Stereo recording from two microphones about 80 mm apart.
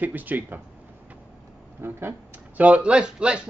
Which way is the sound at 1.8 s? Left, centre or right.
Right.